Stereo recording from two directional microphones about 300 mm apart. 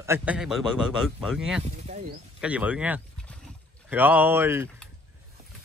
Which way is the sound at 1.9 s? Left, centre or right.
Right.